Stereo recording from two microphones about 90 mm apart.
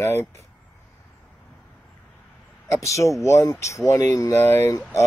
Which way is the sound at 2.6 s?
35° left (ahead or behind).